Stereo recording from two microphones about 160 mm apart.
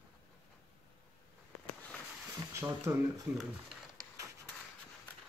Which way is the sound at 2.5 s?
20° right (ahead or behind).